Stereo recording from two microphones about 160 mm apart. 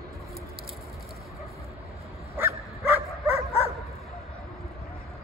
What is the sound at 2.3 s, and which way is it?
Dog, 15° right (ahead or behind).